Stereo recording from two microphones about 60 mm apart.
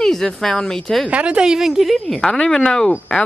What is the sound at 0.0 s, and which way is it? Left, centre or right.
Speech, centre.